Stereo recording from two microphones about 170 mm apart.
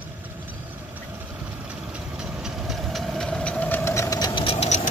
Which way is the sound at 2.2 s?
Centre (ahead or behind).